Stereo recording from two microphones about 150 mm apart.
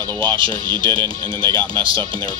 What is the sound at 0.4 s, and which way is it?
Speech, 35° right (ahead or behind).